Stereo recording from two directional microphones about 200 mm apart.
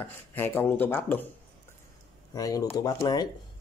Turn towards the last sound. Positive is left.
turn(degrees=20)  # may be behind; listen again after turning